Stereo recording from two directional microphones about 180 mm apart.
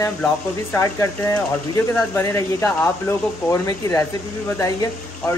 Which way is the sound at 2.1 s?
15° left (ahead or behind).